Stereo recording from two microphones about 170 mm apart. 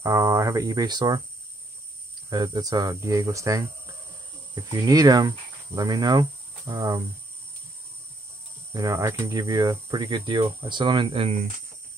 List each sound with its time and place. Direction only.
0.0 s speech: 20° right (ahead or behind)
2.2 s speech: 25° right (ahead or behind)
8.7 s speech: 20° right (ahead or behind); by 11.3 s 35° right (ahead or behind)